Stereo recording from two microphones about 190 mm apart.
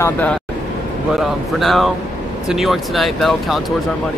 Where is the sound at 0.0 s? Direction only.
10° left (ahead or behind).